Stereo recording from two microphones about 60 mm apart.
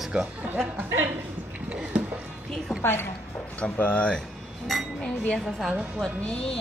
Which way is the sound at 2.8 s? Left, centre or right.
Left.